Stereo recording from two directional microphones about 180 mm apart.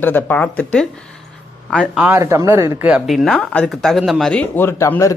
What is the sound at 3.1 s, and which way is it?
Speech, 5° left (ahead or behind).